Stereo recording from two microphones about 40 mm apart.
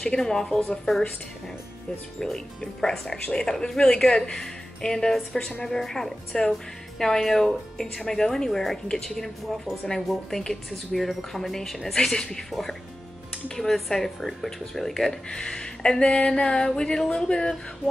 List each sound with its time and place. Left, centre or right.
0.0 s speech: centre
2.1 s speech: centre
6.3 s speech: centre
7.0 s speech: centre
13.7 s speech: centre
15.2 s speech: centre
16.3 s a sound: left